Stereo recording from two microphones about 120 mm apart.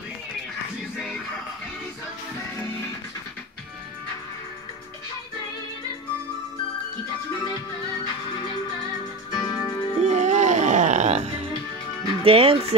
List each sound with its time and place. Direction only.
9.3 s music: 35° left (ahead or behind)
10.0 s music: 80° right
12.2 s speech: 50° right (ahead or behind)